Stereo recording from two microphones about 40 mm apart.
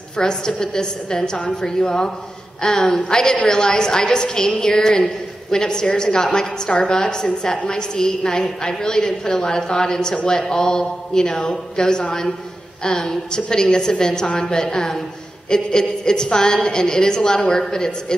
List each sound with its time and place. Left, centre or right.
0.2 s a woman's voice: centre